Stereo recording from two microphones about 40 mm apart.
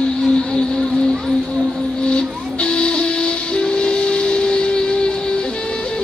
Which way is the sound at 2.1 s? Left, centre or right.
Left.